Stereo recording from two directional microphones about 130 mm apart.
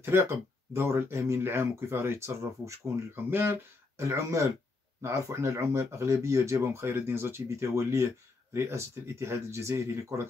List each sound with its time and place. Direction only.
0.0 s speech: 20° right (ahead or behind)